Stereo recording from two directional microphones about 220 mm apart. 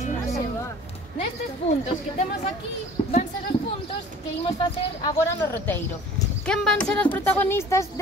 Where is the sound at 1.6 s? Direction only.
25° left (ahead or behind).